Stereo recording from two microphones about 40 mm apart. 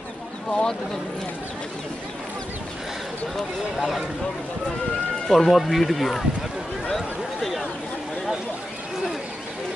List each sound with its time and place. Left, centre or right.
0.5 s speech: centre
5.3 s speech: centre
6.9 s a sound: centre